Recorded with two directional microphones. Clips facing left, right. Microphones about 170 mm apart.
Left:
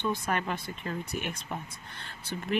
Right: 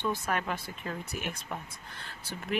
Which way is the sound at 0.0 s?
5° right (ahead or behind).